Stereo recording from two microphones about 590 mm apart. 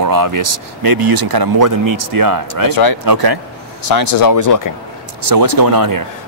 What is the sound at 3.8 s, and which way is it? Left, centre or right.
Speech, left.